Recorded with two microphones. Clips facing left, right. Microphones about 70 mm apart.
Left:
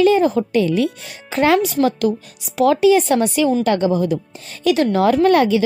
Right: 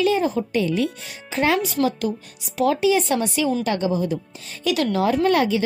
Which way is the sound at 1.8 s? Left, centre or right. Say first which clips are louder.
Left 4 dB; left.